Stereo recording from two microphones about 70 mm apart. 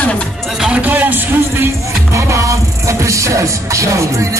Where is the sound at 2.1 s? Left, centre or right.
Right.